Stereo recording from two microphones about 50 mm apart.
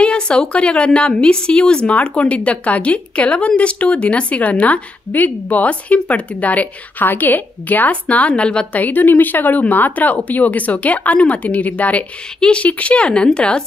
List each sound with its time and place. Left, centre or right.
0.0 s speech: centre
8.7 s speech: left
12.4 s speech: centre